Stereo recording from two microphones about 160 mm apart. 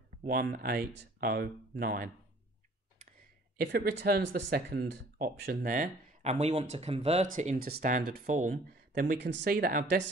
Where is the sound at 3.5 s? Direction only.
75° right (ahead or behind).